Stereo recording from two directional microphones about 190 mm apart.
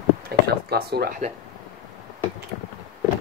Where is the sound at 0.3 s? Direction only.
55° right (ahead or behind).